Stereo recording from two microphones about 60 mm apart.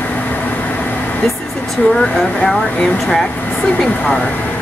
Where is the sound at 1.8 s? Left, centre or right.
Left.